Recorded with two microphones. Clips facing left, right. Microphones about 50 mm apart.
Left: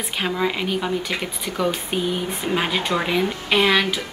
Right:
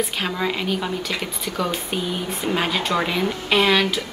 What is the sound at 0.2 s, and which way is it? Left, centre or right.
Speech, centre.